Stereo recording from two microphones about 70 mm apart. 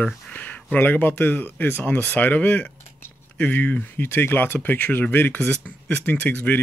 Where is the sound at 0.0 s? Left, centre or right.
Left.